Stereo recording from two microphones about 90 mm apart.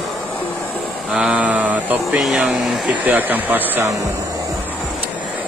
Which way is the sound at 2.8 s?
20° right (ahead or behind).